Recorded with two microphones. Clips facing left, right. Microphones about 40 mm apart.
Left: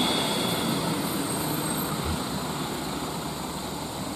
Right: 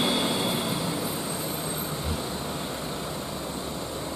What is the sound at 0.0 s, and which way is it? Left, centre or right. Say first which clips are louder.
Vehicle: even; centre.